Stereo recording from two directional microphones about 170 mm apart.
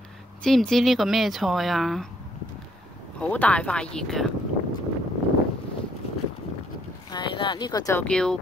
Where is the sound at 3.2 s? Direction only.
10° left (ahead or behind).